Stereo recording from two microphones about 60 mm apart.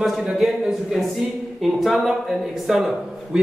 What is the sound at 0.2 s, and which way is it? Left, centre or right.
Speech, centre.